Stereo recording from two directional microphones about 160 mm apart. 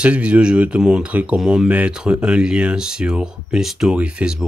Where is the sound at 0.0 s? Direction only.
5° right (ahead or behind).